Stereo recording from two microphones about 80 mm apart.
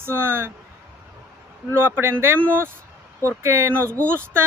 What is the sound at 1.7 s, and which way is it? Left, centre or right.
Speech, right.